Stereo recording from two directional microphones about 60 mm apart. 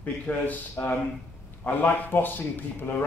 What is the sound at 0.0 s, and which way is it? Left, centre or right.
A man's voice, left.